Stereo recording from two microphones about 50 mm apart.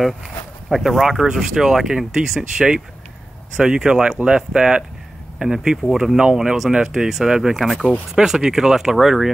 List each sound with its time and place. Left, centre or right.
0.7 s speech: centre
6.9 s speech: centre
7.5 s speech: centre
8.1 s speech: centre